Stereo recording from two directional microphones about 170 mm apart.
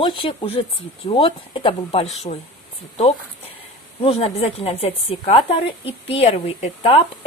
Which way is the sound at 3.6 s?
35° left (ahead or behind).